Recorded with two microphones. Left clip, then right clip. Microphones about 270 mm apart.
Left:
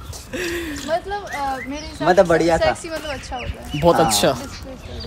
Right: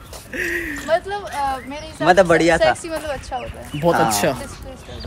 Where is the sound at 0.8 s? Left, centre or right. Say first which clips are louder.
Right 3 dB; right.